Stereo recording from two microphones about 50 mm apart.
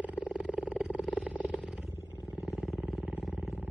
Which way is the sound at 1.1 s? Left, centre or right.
Right.